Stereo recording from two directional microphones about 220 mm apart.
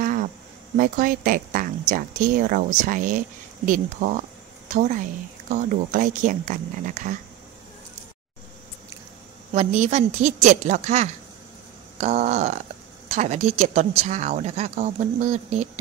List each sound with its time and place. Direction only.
0.0 s a sound: 40° right (ahead or behind)
0.7 s speech: 40° right (ahead or behind)
9.5 s speech: 30° right (ahead or behind)